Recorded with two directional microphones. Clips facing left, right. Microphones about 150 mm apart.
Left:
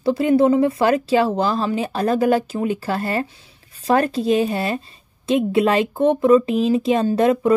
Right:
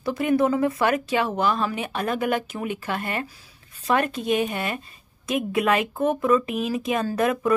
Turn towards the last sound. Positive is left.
turn(degrees=30)  # may be behind; listen again after turning